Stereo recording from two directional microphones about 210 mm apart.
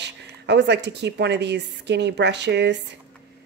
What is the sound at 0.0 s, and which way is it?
A woman's voice, 55° right (ahead or behind).